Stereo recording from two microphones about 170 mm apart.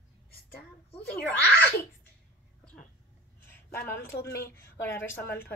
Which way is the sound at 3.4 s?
10° left (ahead or behind).